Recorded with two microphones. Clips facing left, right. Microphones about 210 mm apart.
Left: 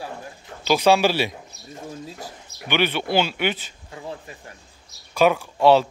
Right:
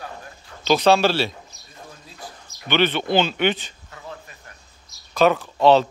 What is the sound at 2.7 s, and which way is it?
Speech, 10° left (ahead or behind).